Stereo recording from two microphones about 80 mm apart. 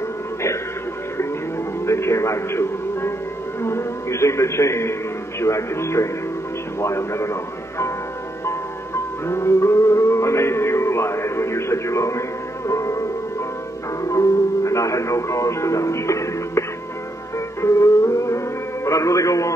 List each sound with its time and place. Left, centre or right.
1.9 s music: left
3.6 s a man's voice: left
8.5 s music: left
14.0 s speech: left
17.6 s music: left
18.9 s a man's voice: left